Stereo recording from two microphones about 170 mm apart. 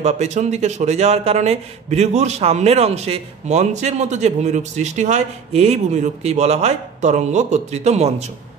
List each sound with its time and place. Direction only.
0.0 s speech: 45° right (ahead or behind)